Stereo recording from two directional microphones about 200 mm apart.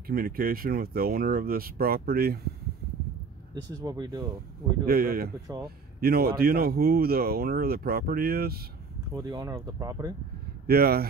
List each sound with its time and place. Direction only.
0.0 s speech: 45° right (ahead or behind)
3.8 s speech: 15° right (ahead or behind)
4.8 s speech: 50° right (ahead or behind)
9.1 s speech: 20° right (ahead or behind)
10.7 s speech: 50° right (ahead or behind)